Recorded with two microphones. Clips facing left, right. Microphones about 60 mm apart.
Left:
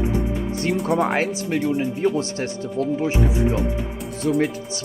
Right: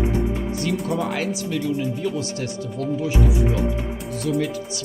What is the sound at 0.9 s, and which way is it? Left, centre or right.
Speech, left.